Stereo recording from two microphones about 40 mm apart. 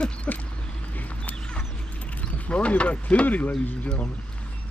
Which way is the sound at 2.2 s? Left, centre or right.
Left.